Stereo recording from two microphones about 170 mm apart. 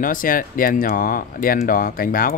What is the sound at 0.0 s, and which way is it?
Speech, 55° left (ahead or behind).